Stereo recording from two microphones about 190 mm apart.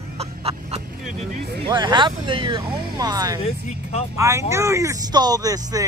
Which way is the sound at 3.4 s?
35° left (ahead or behind).